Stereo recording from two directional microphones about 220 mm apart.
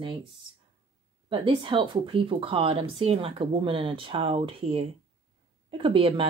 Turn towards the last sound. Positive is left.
turn(degrees=-25)  # may be behind; listen again after turning